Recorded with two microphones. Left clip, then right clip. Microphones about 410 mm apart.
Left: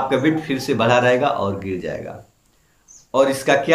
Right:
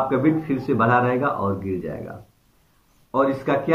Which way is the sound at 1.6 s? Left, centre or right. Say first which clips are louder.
Left 1 dB; left.